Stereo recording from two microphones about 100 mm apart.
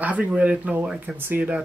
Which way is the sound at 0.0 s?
15° right (ahead or behind).